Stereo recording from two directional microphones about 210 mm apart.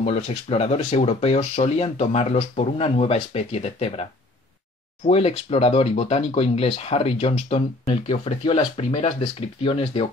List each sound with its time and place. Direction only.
0.0 s speech: 30° left (ahead or behind)
5.0 s speech: 30° left (ahead or behind)